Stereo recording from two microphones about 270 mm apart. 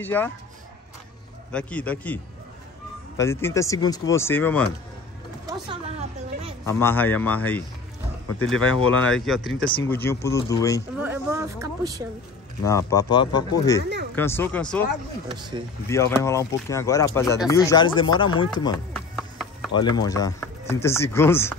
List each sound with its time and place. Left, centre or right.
0.0 s speech: centre
1.5 s a man's voice: centre
3.2 s speech: centre
5.5 s a sound: right
6.6 s speech: centre
8.3 s speech: left
9.1 s a man's voice: centre
11.0 s speech: centre
12.6 s speech: centre
15.2 s speech: centre
15.9 s speech: centre
18.9 s music: centre
19.7 s speech: centre